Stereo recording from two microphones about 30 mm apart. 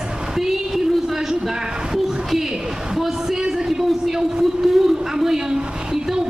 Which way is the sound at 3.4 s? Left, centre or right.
Centre.